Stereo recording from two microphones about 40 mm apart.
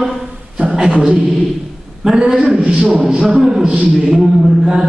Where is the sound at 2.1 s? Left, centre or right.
Centre.